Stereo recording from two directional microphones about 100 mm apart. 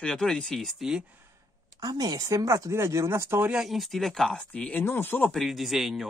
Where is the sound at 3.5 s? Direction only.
Centre (ahead or behind); by 5.2 s 20° left (ahead or behind).